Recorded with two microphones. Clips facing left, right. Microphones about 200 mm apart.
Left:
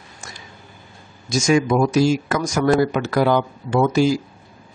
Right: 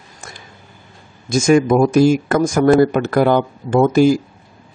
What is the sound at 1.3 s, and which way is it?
Speech, 55° right (ahead or behind).